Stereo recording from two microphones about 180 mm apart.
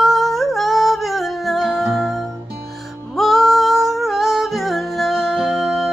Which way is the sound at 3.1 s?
Centre (ahead or behind).